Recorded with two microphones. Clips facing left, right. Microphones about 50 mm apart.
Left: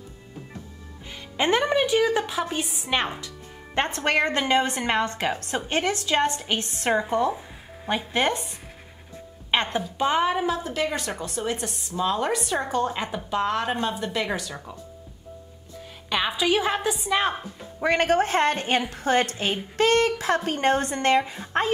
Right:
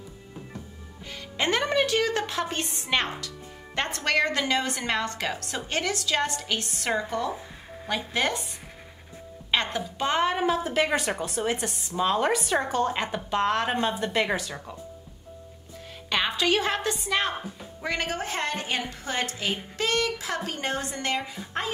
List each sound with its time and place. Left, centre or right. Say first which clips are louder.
1.1 s a woman's voice: left 4 dB; centre
3.7 s a woman's voice: left 3 dB; left
9.9 s a woman's voice: left 2 dB; centre
10.4 s a woman's voice: right 1 dB; centre
16.1 s a woman's voice: left 1 dB; centre
17.8 s a woman's voice: left 9 dB; left